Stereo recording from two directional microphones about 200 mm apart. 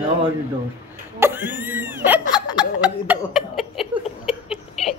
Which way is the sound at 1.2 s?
10° right (ahead or behind).